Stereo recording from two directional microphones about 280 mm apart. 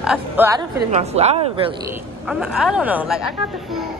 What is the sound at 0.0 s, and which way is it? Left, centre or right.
Speech, centre.